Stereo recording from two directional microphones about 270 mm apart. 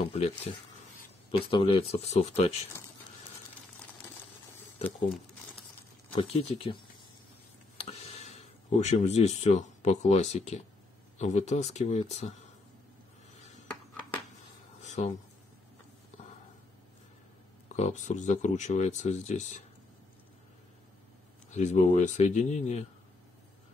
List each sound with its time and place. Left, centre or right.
0.1 s speech: left
1.5 s speech: centre
6.3 s speech: left
14.8 s a sound: left
17.6 s speech: left
21.5 s speech: left